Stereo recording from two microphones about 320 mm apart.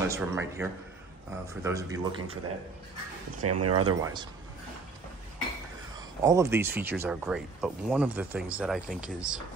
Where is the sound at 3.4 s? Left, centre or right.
Right.